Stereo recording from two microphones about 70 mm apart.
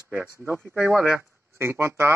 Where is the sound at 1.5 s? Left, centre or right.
Right.